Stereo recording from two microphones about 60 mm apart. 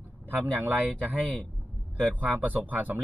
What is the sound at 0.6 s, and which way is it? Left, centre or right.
Speech, right.